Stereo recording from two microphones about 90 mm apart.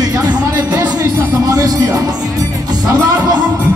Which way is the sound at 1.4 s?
40° right (ahead or behind).